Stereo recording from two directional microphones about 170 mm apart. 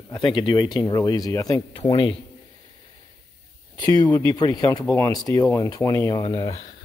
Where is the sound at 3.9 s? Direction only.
20° left (ahead or behind).